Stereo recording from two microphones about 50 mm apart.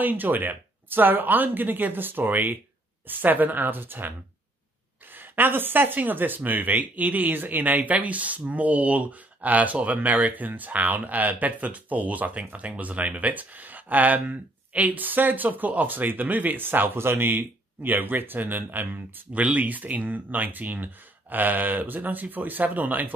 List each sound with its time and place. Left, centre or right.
0.0 s speech: right
5.1 s speech: right